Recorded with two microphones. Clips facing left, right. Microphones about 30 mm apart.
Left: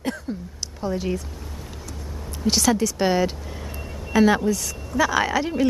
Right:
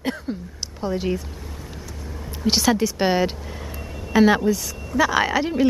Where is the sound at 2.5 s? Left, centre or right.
Centre.